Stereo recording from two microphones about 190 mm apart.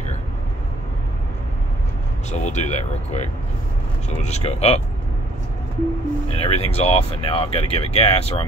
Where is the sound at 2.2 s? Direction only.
35° left (ahead or behind).